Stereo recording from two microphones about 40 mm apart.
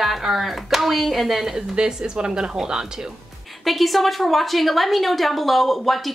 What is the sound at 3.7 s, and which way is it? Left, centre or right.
A woman's voice, centre.